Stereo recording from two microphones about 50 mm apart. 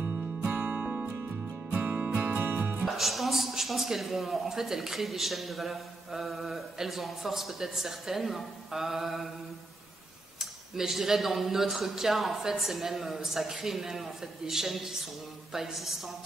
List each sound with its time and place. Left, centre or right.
0.0 s music: right
2.8 s a man's voice: centre
10.4 s a man's voice: centre